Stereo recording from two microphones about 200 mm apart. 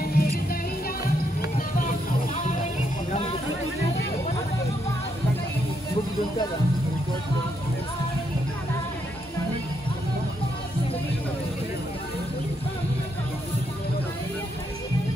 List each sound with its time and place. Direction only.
0.0 s music: 50° left (ahead or behind)